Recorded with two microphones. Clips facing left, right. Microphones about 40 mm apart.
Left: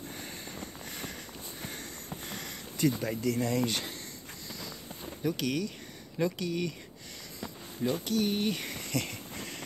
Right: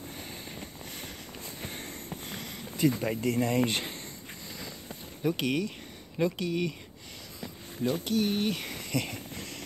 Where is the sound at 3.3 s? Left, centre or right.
Right.